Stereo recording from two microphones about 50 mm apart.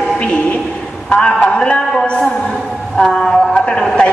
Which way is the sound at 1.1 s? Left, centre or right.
Centre.